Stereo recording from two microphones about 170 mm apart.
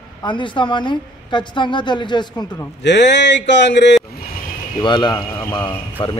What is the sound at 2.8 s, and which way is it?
Speech, 90° left.